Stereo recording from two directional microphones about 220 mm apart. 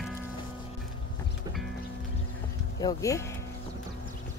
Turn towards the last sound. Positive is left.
turn(degrees=15)  # may be behind; listen again after turning